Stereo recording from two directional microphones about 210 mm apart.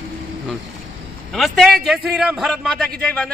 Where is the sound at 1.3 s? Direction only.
Centre (ahead or behind).